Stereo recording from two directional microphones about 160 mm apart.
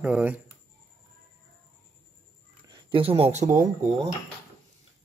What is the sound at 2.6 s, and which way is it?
Speech, 30° right (ahead or behind).